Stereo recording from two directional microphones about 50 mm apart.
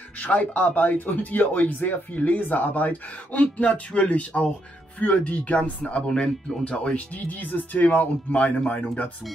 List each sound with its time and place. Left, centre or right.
0.2 s speech: left
4.3 s speech: centre
5.0 s speech: left
6.0 s speech: centre
7.2 s speech: left